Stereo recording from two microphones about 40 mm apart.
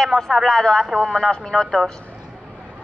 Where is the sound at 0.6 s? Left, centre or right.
Centre.